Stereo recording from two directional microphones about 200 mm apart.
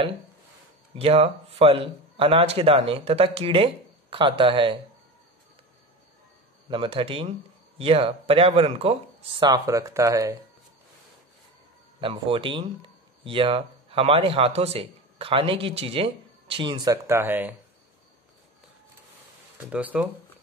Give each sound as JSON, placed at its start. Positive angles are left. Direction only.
{"t": 0.9, "sound": "a man's voice", "side_deg": -30}
{"t": 6.7, "sound": "a man's voice", "side_deg": -25}
{"t": 12.0, "sound": "a man's voice", "side_deg": -25}
{"t": 19.7, "sound": "speech", "side_deg": -5}